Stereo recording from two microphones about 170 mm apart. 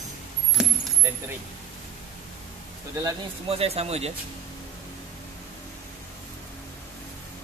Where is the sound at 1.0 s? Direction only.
15° right (ahead or behind).